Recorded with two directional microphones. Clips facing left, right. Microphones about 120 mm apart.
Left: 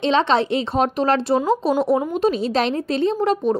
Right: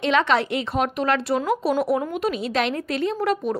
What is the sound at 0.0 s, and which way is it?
A woman's voice, 25° left (ahead or behind).